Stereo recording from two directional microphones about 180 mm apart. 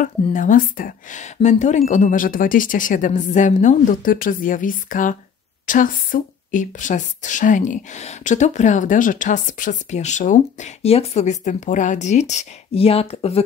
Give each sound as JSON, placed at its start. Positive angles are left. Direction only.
{"t": 0.0, "sound": "a woman's voice", "side_deg": 45}